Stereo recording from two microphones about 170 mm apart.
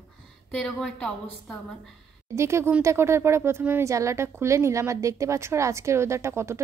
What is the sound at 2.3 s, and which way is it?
Speech, 15° right (ahead or behind).